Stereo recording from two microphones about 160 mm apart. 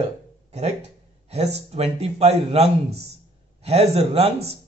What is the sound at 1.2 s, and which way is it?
Speech, 40° right (ahead or behind).